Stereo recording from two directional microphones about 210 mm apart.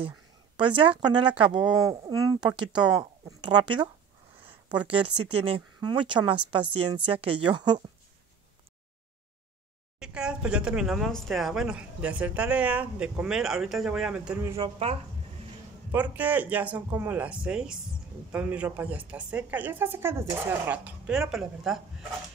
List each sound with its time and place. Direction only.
0.6 s speech: 25° right (ahead or behind)
9.9 s speech: 5° right (ahead or behind)
15.9 s a woman's voice: 10° right (ahead or behind)